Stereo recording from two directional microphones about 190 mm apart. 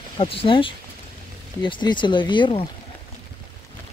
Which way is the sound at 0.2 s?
30° left (ahead or behind).